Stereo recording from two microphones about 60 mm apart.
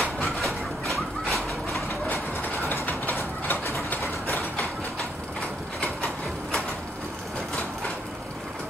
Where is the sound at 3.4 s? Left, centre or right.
Left.